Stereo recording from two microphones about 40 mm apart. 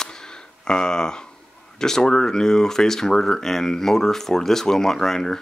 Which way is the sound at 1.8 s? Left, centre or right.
Centre.